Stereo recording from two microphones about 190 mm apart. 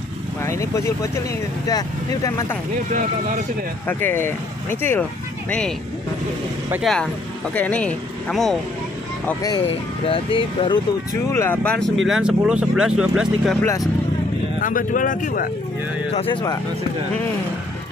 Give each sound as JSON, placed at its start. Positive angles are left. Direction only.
{"t": 0.4, "sound": "speech", "side_deg": 15}
{"t": 3.8, "sound": "speech", "side_deg": 10}
{"t": 6.7, "sound": "speech", "side_deg": 0}
{"t": 10.0, "sound": "speech", "side_deg": 30}
{"t": 11.3, "sound": "speech", "side_deg": 10}
{"t": 13.6, "sound": "speech", "side_deg": 15}
{"t": 14.6, "sound": "speech", "side_deg": 45}